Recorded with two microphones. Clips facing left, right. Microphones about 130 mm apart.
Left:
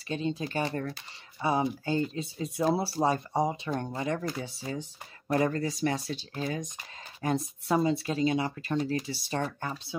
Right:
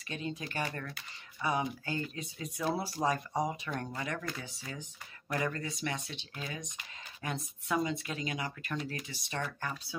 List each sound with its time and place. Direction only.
0.1 s speech: 30° left (ahead or behind)